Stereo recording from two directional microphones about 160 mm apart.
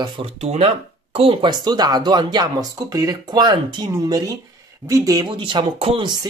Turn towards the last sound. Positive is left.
turn(degrees=-30)  # may be behind; listen again after turning